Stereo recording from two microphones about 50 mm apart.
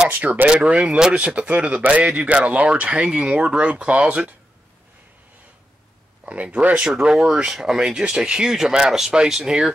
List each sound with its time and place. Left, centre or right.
0.1 s speech: right
0.5 s speech: centre
6.2 s speech: right